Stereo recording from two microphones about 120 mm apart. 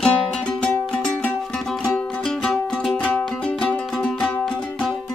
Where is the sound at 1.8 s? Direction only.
5° left (ahead or behind).